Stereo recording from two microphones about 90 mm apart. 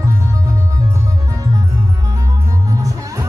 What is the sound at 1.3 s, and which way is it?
Music, 40° right (ahead or behind).